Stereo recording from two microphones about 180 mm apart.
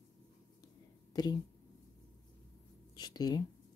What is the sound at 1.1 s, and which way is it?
Speech, 20° left (ahead or behind).